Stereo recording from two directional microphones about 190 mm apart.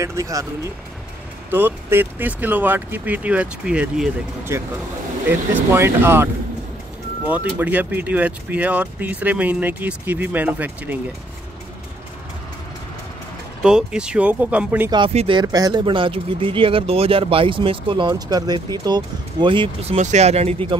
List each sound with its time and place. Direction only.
0.0 s speech: 15° right (ahead or behind)
1.5 s speech: 10° right (ahead or behind)
13.6 s speech: 5° right (ahead or behind)
14.9 s speech: 25° right (ahead or behind)